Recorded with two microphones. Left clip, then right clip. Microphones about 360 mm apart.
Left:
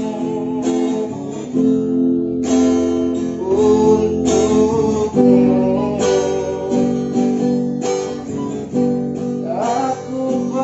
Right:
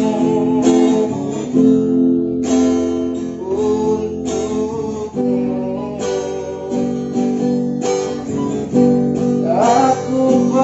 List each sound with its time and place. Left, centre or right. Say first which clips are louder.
0.0 s music: right 6 dB; right
1.5 s music: right 3 dB; right
2.5 s music: left 1 dB; centre
3.5 s music: left 4 dB; left
7.2 s music: right 1 dB; centre
8.7 s guitar: right 5 dB; right
9.5 s music: right 6 dB; right